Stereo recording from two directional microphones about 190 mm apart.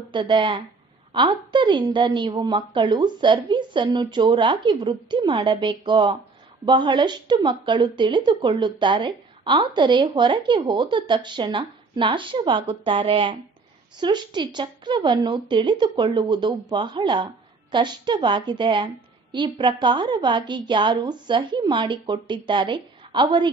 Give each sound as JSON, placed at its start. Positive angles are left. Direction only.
{"t": 0.1, "sound": "a woman's voice", "side_deg": -25}